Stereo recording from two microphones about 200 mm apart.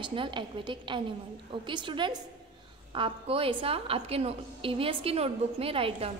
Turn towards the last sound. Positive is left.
turn(degrees=-30)  # may be behind; listen again after turning